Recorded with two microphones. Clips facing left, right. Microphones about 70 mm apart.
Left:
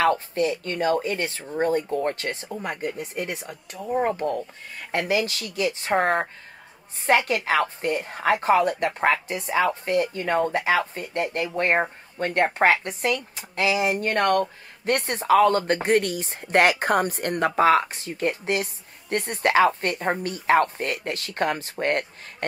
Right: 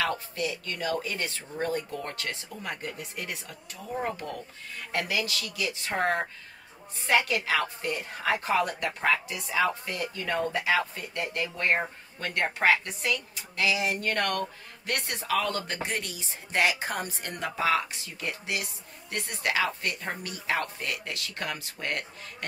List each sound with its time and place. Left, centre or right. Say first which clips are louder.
0.0 s a woman's voice: left 8 dB; left
2.7 s a woman's voice: left 5 dB; left